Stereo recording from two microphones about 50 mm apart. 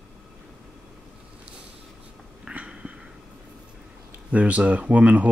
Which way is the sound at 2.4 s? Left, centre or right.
Right.